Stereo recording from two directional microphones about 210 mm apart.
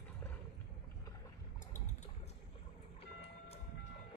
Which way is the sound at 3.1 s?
30° left (ahead or behind).